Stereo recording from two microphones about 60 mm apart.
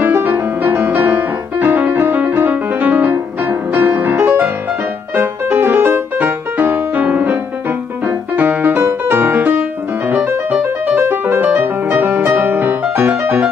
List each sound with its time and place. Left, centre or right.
0.0 s music: right